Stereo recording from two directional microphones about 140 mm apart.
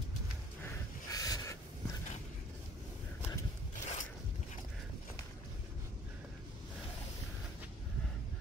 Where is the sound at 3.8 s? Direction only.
55° left (ahead or behind).